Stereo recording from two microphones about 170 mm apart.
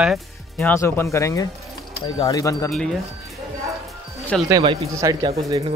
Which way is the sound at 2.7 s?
5° left (ahead or behind).